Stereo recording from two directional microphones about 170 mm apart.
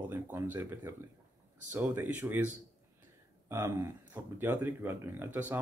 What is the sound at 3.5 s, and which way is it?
Speech, 15° right (ahead or behind).